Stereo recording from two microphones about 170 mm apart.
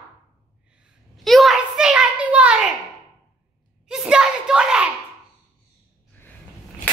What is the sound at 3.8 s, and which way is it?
A child's voice, 5° right (ahead or behind).